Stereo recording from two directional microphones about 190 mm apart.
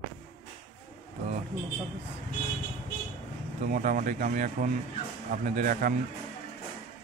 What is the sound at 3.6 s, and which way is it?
Speech, 45° right (ahead or behind).